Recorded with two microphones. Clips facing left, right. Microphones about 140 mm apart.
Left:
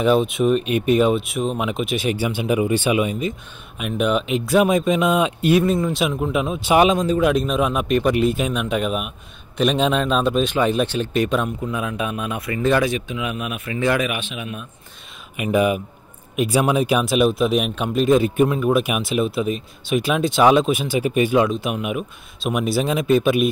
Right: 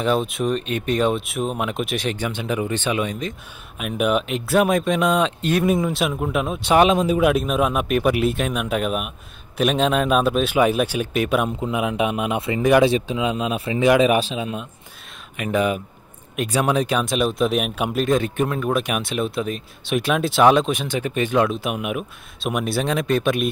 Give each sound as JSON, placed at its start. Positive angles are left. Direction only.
{"t": 0.0, "sound": "speech", "side_deg": 0}
{"t": 5.7, "sound": "speech", "side_deg": -10}
{"t": 7.0, "sound": "speech", "side_deg": -5}
{"t": 11.4, "sound": "speech", "side_deg": -20}
{"t": 14.0, "sound": "speech", "side_deg": -35}
{"t": 15.3, "sound": "speech", "side_deg": 10}